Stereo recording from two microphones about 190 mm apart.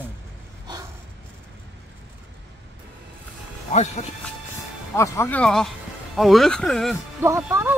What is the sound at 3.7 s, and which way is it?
Speech, 35° left (ahead or behind).